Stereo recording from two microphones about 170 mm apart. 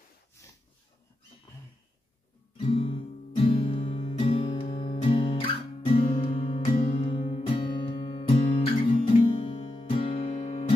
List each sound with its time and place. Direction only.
2.5 s music: 35° left (ahead or behind)